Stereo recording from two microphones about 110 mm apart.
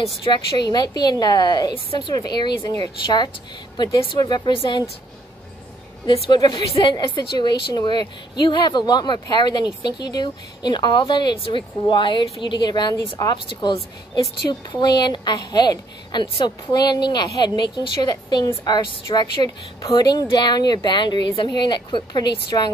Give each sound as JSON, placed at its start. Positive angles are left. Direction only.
{"t": 0.2, "sound": "a woman's voice", "side_deg": 40}
{"t": 3.7, "sound": "a woman's voice", "side_deg": 40}
{"t": 6.0, "sound": "a woman's voice", "side_deg": 50}